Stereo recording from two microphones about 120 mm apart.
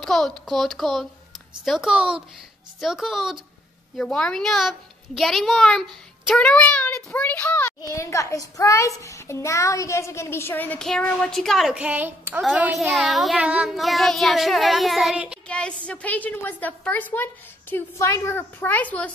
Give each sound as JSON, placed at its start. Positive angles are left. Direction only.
{"t": 0.0, "sound": "child singing", "side_deg": 5}
{"t": 6.3, "sound": "a woman's voice", "side_deg": 10}
{"t": 10.8, "sound": "child singing", "side_deg": 5}
{"t": 12.4, "sound": "a child's voice", "side_deg": -10}
{"t": 12.7, "sound": "child singing", "side_deg": 0}
{"t": 15.4, "sound": "a woman's voice", "side_deg": 10}